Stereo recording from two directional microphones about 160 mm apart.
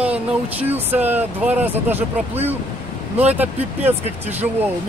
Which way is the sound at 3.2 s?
10° right (ahead or behind).